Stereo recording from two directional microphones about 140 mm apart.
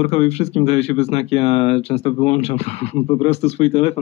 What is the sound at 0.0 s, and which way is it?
Speech, 50° left (ahead or behind).